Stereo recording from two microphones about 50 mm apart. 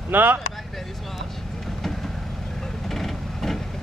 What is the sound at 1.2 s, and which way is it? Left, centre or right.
Vehicle, centre.